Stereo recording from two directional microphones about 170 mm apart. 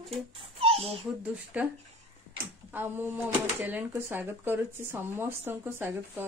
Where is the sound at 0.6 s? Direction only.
35° right (ahead or behind).